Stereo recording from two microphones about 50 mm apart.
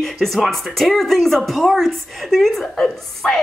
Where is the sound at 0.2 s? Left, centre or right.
Centre.